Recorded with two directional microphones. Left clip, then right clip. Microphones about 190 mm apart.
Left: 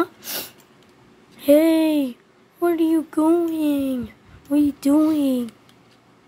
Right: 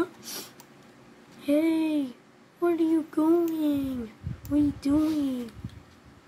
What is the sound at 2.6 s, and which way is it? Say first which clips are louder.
Speech: left 5 dB; 30° left (ahead or behind).